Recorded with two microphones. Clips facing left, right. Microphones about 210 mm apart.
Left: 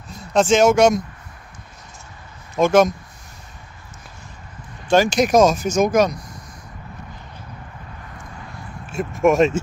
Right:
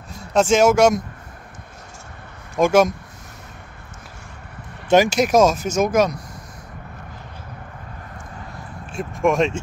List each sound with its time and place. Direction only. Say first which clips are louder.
0.3 s speech: even; 5° right (ahead or behind)
2.5 s speech: left 1 dB; 10° right (ahead or behind)
4.8 s speech: right 1 dB; 15° right (ahead or behind)
5.1 s speech: left 1 dB; 5° right (ahead or behind)
8.9 s speech: left 3 dB; centre (ahead or behind)